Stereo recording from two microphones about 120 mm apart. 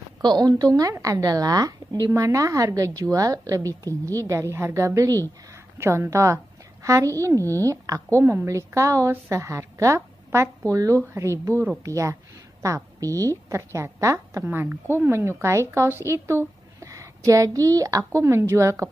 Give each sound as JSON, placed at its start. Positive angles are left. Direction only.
{"t": 0.2, "sound": "a woman's voice", "side_deg": -35}
{"t": 16.8, "sound": "a sound", "side_deg": -25}
{"t": 17.3, "sound": "speech", "side_deg": -30}